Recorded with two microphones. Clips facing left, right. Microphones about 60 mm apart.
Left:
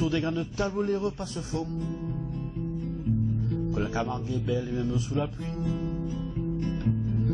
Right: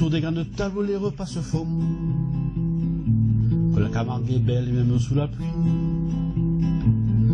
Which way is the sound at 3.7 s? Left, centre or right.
Left.